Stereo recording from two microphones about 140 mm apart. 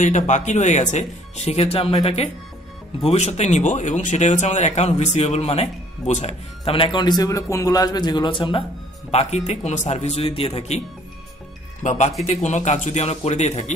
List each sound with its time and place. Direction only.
0.0 s speech: 55° left (ahead or behind)
3.1 s speech: 50° left (ahead or behind)
9.1 s speech: 50° left (ahead or behind)
11.8 s speech: 60° left (ahead or behind)